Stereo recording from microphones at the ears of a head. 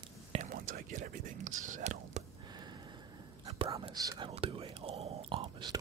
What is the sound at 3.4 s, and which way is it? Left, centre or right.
Speech, right.